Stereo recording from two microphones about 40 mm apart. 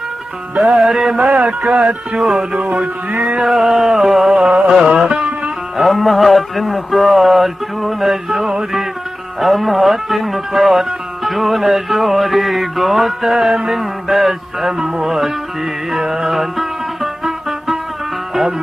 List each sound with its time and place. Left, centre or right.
0.6 s speech: centre
1.1 s music: centre
3.1 s music: right
3.4 s speech: centre
4.6 s music: centre
5.0 s music: right
5.8 s speech: centre
13.7 s music: centre
16.3 s music: centre